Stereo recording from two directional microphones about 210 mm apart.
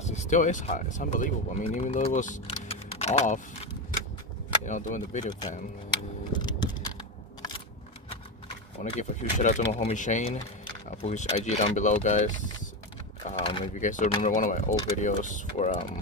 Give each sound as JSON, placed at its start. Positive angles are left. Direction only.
{"t": 0.0, "sound": "speech", "side_deg": 35}
{"t": 5.9, "sound": "a sound", "side_deg": 20}
{"t": 8.9, "sound": "speech", "side_deg": 35}
{"t": 13.2, "sound": "mechanisms", "side_deg": 30}
{"t": 13.7, "sound": "speech", "side_deg": 35}